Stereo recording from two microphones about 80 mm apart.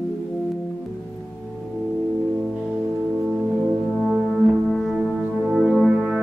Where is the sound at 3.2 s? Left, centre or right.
Centre.